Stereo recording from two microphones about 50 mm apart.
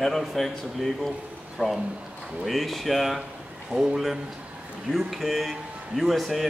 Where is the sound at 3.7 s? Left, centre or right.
Right.